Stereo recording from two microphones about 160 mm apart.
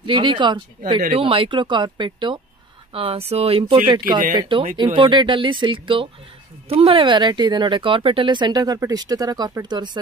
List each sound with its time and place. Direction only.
0.0 s speech: 30° right (ahead or behind)